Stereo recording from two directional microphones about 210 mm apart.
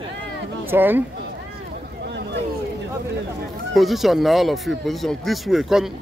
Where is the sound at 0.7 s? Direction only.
10° right (ahead or behind).